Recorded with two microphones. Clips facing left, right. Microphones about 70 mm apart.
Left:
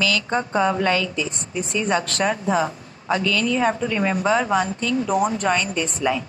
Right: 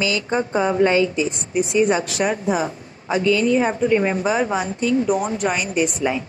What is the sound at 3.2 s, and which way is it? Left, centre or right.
A woman's voice, right.